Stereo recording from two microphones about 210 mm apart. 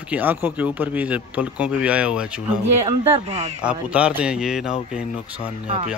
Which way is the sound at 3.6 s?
5° right (ahead or behind).